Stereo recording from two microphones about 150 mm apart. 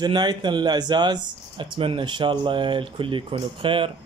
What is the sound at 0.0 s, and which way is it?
Speech, 30° right (ahead or behind).